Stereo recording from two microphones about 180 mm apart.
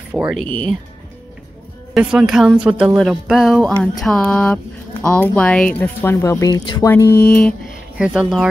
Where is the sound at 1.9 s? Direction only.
5° right (ahead or behind).